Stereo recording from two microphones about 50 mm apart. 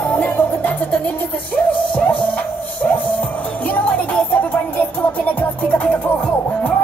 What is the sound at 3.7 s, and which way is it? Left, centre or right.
Music, left.